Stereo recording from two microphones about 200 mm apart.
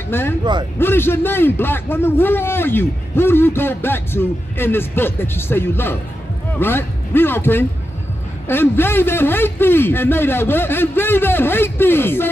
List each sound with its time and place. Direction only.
0.4 s speech: 20° right (ahead or behind)
0.7 s a man's voice: 10° left (ahead or behind)